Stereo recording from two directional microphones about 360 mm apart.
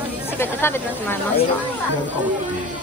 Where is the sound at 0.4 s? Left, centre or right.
Centre.